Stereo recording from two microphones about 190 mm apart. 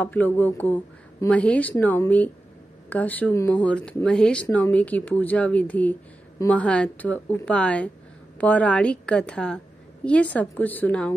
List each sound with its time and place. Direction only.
0.0 s a woman's voice: 10° left (ahead or behind)